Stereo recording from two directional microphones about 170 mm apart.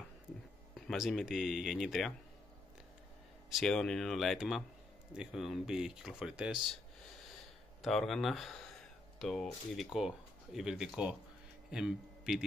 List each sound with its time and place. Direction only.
0.7 s speech: centre (ahead or behind)
3.4 s speech: centre (ahead or behind)
7.8 s a man's voice: centre (ahead or behind)